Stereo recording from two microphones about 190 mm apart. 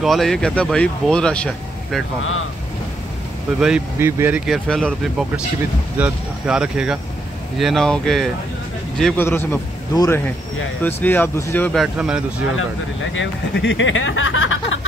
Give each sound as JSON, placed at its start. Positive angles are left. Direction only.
{"t": 0.0, "sound": "speech", "side_deg": 0}
{"t": 3.5, "sound": "speech", "side_deg": -5}
{"t": 5.9, "sound": "speech", "side_deg": -5}
{"t": 11.8, "sound": "speech", "side_deg": -5}
{"t": 12.5, "sound": "speech", "side_deg": 85}